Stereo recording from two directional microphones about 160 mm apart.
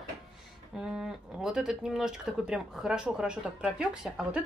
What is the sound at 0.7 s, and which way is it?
Speech, 5° right (ahead or behind).